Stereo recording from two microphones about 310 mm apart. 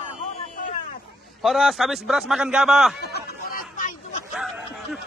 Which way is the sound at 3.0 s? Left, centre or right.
Left.